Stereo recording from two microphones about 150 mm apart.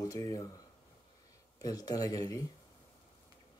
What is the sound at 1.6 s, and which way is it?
Speech, 25° left (ahead or behind).